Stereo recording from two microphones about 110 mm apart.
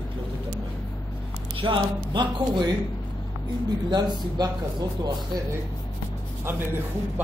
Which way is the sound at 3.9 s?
35° right (ahead or behind).